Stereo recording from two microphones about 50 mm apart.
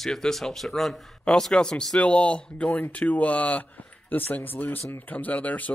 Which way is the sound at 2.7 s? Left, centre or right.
Left.